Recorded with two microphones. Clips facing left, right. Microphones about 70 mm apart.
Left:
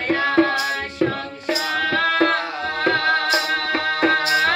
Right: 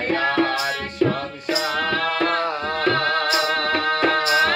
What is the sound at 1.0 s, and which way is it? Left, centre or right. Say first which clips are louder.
Music: right 2 dB; left.